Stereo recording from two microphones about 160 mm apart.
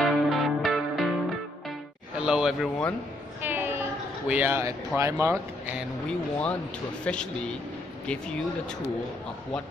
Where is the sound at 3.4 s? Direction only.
15° right (ahead or behind).